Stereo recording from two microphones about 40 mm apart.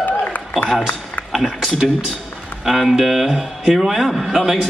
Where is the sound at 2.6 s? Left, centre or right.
Centre.